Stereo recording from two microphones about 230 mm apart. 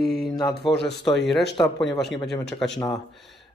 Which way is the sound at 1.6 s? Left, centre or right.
Centre.